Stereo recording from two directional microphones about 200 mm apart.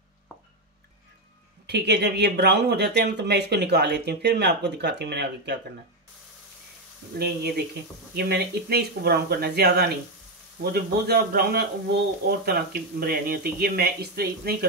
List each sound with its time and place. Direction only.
1.7 s speech: 55° right (ahead or behind)
7.2 s a man's voice: 55° right (ahead or behind)